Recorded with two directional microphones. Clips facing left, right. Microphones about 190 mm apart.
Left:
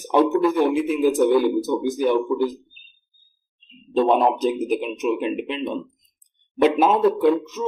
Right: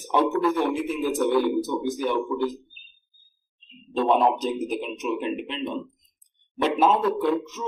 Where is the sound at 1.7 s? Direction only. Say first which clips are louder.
Left 5 dB; 10° left (ahead or behind).